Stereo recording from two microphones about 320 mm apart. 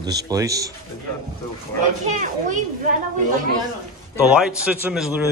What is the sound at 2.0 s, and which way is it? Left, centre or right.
Speech, right.